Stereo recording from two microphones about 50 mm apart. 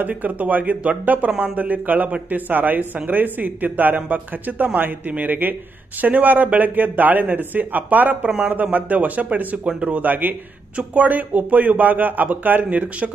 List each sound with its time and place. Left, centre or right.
0.0 s speech: right